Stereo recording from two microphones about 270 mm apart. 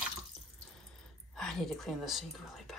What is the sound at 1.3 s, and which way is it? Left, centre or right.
Speech, centre.